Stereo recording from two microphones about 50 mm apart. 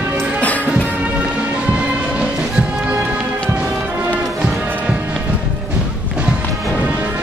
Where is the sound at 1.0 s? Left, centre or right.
Right.